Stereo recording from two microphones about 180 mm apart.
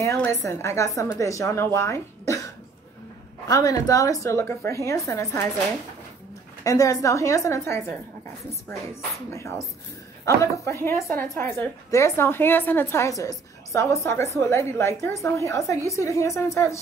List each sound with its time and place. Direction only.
0.0 s speech: 15° left (ahead or behind)
6.6 s speech: 20° left (ahead or behind)
9.3 s speech: 15° left (ahead or behind)